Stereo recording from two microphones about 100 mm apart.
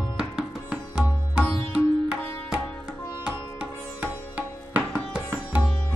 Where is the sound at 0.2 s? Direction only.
10° right (ahead or behind).